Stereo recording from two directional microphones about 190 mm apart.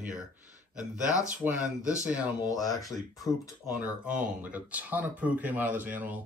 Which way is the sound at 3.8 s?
5° right (ahead or behind).